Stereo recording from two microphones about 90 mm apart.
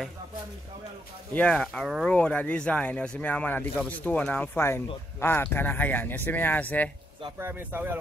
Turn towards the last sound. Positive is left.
turn(degrees=-20)  # may be behind; listen again after turning